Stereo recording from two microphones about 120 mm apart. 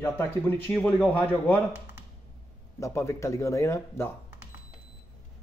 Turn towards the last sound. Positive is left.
turn(degrees=20)  # may be behind; listen again after turning